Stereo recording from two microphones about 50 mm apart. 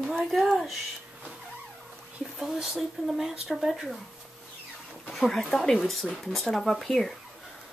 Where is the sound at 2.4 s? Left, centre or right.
Centre.